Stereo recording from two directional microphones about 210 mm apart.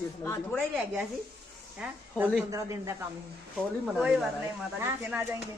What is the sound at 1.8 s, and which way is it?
Speech, 5° right (ahead or behind).